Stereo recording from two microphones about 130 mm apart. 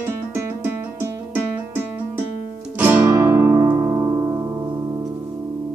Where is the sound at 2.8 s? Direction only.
15° right (ahead or behind).